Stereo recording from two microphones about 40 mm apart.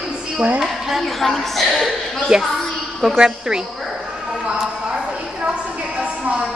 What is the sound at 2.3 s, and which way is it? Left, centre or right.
A woman's voice, right.